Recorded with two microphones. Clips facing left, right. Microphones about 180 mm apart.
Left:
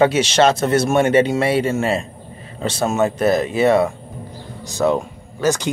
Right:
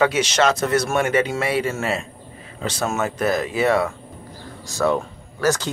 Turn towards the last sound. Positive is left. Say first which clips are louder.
# left 2 dB
turn(degrees=20)  # may be behind; listen again after turning